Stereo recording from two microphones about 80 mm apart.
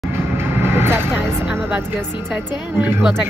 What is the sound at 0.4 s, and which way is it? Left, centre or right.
Vehicle, right.